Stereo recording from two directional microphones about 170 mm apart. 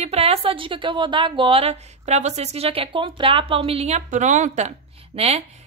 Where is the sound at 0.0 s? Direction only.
35° right (ahead or behind).